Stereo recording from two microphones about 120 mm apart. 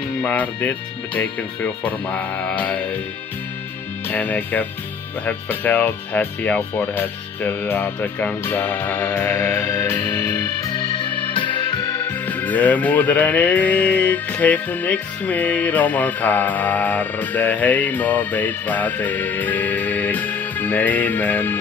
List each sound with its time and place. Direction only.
0.2 s music: 10° left (ahead or behind)
4.1 s music: 15° left (ahead or behind)
10.7 s music: 40° left (ahead or behind)
12.0 s music: 15° left (ahead or behind)